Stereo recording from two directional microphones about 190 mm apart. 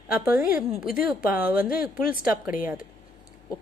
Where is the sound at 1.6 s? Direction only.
50° left (ahead or behind).